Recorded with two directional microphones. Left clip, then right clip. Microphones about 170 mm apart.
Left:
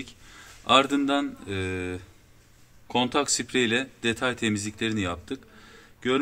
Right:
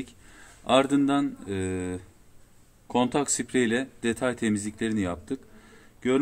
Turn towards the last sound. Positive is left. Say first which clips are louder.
# even
turn(degrees=-35)  # may be behind; listen again after turning